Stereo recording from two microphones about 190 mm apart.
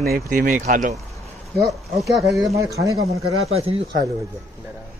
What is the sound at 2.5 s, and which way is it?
Speech, 15° right (ahead or behind).